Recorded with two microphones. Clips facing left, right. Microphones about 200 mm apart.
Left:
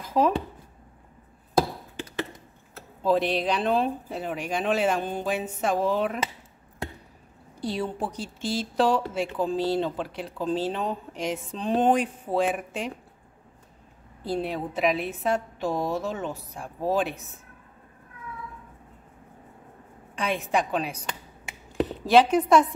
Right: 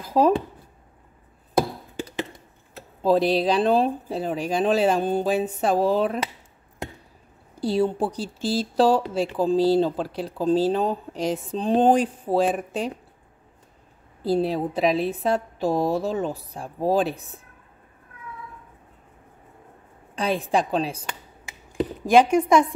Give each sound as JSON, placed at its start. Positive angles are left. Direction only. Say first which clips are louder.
{"t": 0.2, "sound": "speech", "louder": "right 4 dB", "side_deg": -35}
{"t": 3.0, "sound": "speech", "louder": "right 4 dB", "side_deg": -35}
{"t": 7.6, "sound": "speech", "louder": "right 7 dB", "side_deg": -30}
{"t": 14.2, "sound": "speech", "louder": "right 6 dB", "side_deg": -35}
{"t": 20.2, "sound": "speech", "louder": "right 3 dB", "side_deg": -35}
{"t": 22.1, "sound": "a woman's voice", "louder": "right 2 dB", "side_deg": -10}